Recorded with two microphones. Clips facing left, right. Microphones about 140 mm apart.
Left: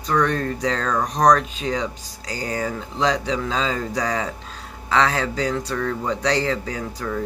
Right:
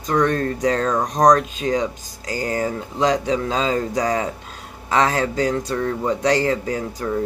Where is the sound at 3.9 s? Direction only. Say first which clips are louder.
Right 3 dB; 20° right (ahead or behind).